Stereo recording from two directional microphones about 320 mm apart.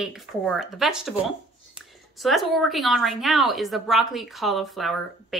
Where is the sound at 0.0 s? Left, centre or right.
Centre.